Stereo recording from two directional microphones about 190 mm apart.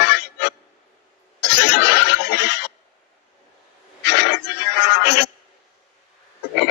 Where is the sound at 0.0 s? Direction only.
60° left (ahead or behind).